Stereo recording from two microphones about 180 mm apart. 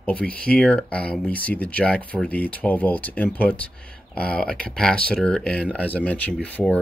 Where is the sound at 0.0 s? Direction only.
5° left (ahead or behind).